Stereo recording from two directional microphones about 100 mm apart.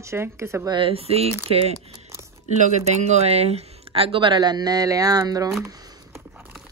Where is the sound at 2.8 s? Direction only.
90° right; by 5.9 s 40° right (ahead or behind).